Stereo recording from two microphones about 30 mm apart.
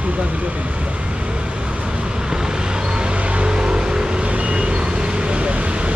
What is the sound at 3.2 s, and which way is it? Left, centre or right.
Vehicle, right.